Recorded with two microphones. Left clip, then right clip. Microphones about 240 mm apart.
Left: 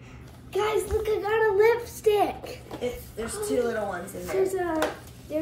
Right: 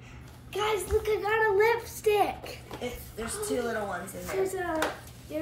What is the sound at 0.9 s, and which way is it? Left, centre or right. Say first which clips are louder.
A child's voice: right 1 dB; centre.